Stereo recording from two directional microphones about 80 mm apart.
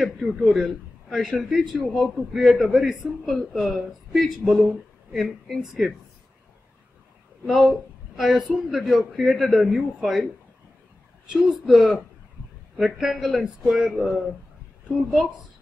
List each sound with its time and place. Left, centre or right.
0.0 s a man's voice: centre
7.4 s a woman's voice: centre
11.2 s a man's voice: centre